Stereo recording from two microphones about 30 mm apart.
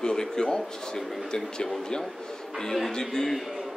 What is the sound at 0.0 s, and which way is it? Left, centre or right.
A man's voice, left.